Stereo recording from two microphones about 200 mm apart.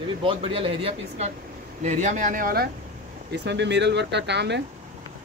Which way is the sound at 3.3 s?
60° right (ahead or behind).